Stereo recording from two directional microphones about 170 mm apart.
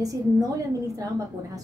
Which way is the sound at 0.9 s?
20° right (ahead or behind).